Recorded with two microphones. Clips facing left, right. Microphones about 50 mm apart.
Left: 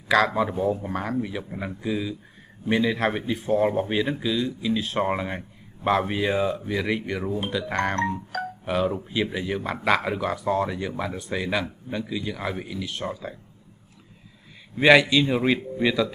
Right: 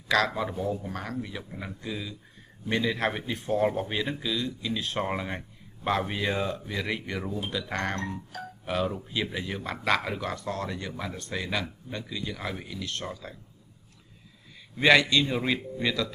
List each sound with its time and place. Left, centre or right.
0.1 s a man's voice: centre
14.8 s a man's voice: centre